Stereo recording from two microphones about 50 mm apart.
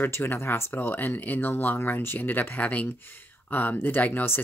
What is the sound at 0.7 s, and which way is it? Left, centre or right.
Speech, left.